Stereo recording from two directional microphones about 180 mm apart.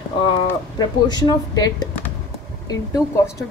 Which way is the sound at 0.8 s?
25° left (ahead or behind).